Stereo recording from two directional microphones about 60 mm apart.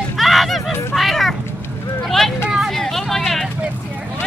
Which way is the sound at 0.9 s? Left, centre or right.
Centre.